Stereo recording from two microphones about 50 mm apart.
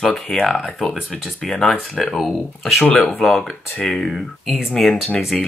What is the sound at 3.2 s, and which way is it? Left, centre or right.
Speech, centre.